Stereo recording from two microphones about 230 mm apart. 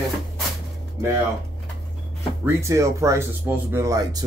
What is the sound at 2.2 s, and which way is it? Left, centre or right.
Speech, centre.